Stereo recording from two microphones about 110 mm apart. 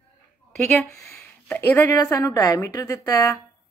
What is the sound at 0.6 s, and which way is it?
Speech, 15° left (ahead or behind).